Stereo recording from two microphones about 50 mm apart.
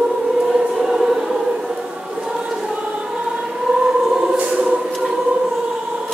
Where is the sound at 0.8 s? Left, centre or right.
Centre.